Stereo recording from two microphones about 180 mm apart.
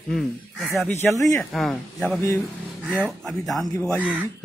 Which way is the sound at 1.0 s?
15° left (ahead or behind).